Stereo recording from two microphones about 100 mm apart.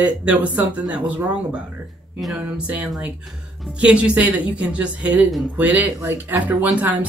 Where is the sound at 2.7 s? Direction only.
15° right (ahead or behind).